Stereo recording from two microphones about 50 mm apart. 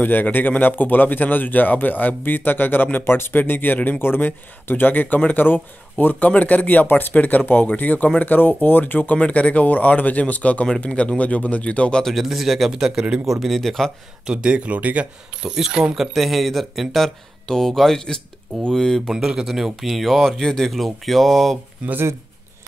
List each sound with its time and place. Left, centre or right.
0.0 s speech: left
12.0 s speech: centre
14.2 s speech: centre
15.4 s speech: centre
19.1 s speech: centre
21.8 s speech: right